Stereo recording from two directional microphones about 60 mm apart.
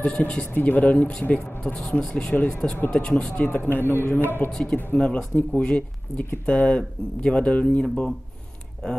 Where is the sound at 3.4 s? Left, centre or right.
Left.